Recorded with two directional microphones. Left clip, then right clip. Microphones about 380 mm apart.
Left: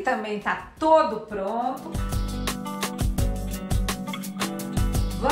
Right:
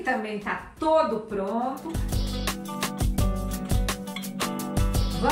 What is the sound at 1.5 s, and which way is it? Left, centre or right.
Music, centre.